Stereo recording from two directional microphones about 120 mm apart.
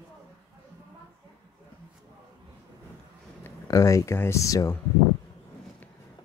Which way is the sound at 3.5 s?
25° left (ahead or behind).